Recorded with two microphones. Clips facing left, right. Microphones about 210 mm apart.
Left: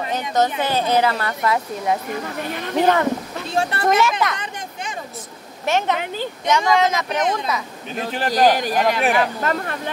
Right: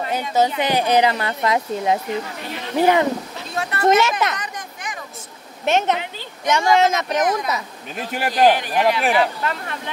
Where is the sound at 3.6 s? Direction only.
30° left (ahead or behind).